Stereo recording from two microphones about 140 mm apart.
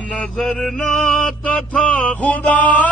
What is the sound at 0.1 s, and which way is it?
Mantra, 5° left (ahead or behind).